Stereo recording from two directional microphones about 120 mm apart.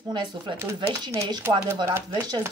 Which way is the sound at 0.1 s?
40° right (ahead or behind).